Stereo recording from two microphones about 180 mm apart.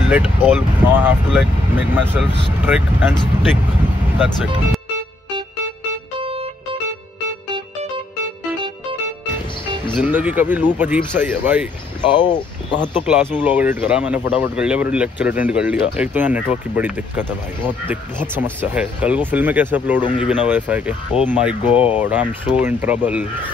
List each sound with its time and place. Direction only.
0.1 s speech: 10° right (ahead or behind)
6.1 s music: 30° right (ahead or behind)
9.9 s speech: 10° right (ahead or behind)
12.1 s speech: 25° left (ahead or behind)
13.0 s speech: 10° right (ahead or behind)
18.3 s speech: 10° right (ahead or behind)